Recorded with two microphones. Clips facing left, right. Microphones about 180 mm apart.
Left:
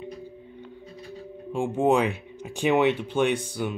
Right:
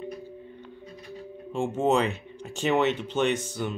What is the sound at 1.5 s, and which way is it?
Speech, 10° left (ahead or behind).